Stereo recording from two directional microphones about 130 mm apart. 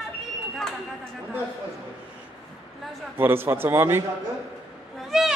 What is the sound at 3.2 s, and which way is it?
Speech, 15° right (ahead or behind).